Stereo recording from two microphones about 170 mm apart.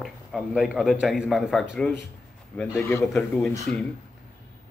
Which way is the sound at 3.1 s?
5° left (ahead or behind).